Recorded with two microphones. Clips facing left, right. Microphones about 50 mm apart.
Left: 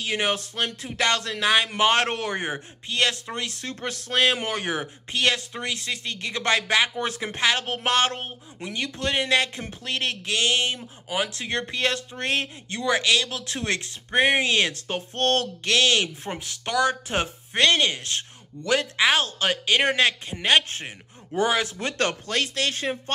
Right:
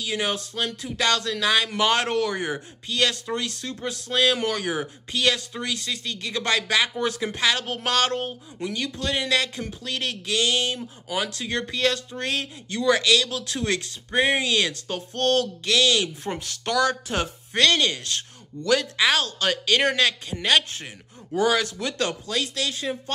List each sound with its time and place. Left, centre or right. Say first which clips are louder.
0.0 s speech: left 1 dB; left
10.8 s speech: even; left
16.3 s speech: right 2 dB; centre; by 23.1 s left